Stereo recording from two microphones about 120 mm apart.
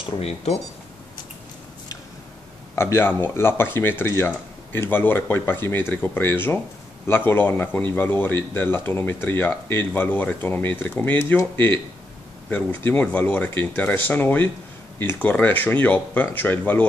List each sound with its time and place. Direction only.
0.2 s speech: 60° left (ahead or behind)
2.7 s speech: 20° left (ahead or behind)